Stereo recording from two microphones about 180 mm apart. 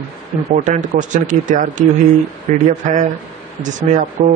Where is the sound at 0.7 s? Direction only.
45° right (ahead or behind).